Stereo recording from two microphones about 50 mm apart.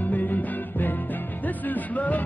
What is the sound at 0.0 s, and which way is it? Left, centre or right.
Music, left.